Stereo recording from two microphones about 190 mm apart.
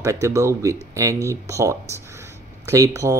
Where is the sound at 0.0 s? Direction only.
15° right (ahead or behind).